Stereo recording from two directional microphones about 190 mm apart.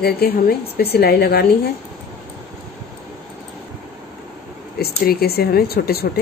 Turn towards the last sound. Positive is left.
turn(degrees=55)  # may be behind; listen again after turning